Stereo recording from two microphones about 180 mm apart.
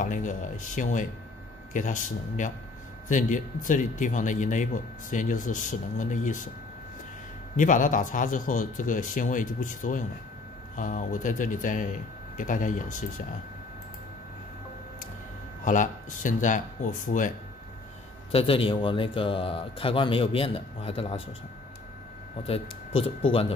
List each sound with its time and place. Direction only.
0.0 s speech: 45° left (ahead or behind)
7.5 s speech: 45° left (ahead or behind)
15.6 s speech: 45° left (ahead or behind)
18.3 s speech: 30° left (ahead or behind)
22.5 s speech: 30° left (ahead or behind)